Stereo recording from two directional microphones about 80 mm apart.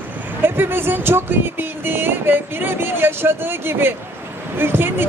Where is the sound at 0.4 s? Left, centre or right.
Right.